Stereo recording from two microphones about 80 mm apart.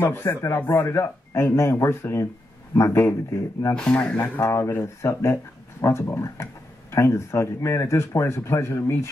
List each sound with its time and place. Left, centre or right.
0.0 s speech: left
3.7 s speech: centre
4.2 s speech: left